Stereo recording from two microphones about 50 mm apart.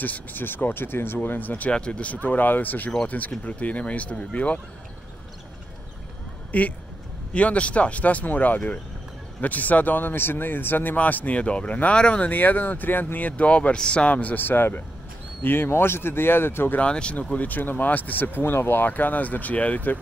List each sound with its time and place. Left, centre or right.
0.0 s speech: left
1.7 s speech: left
6.5 s speech: left
12.3 s speech: left
16.8 s speech: left
18.9 s speech: left